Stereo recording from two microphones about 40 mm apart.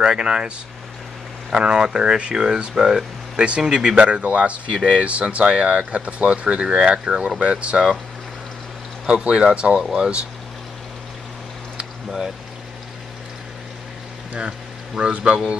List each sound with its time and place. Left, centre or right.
0.0 s speech: right
1.5 s speech: right
3.4 s speech: right
3.9 s speech: right
9.2 s speech: right
15.0 s speech: right